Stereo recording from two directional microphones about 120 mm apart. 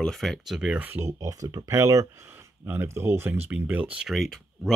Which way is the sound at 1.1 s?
30° right (ahead or behind).